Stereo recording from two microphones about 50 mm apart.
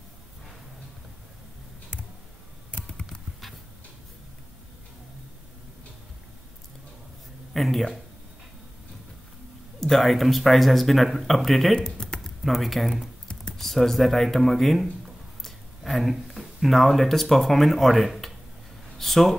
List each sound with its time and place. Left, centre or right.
2.7 s computer keyboard: centre
3.1 s clip-clop: centre
7.5 s speech: centre
9.8 s speech: centre
11.7 s typing: centre
12.4 s speech: centre
18.9 s a sound: centre